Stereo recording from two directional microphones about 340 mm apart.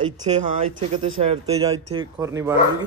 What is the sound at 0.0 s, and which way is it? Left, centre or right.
Speech, centre.